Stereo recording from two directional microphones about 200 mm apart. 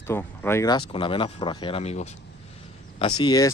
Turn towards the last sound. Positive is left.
turn(degrees=20)  # may be behind; listen again after turning